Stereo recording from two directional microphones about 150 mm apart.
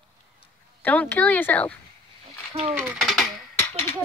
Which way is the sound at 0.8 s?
10° left (ahead or behind).